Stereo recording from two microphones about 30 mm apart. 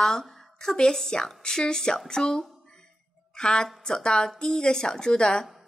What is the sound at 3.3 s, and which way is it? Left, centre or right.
A woman's voice, left.